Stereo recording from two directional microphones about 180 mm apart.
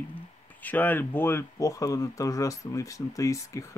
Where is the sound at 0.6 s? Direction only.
10° left (ahead or behind).